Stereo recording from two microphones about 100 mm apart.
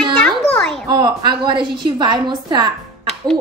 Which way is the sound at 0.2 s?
10° left (ahead or behind).